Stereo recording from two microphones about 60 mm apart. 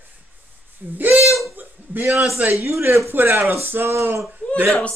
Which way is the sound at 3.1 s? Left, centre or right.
Right.